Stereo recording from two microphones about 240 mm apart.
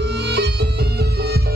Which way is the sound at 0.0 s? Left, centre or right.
Right.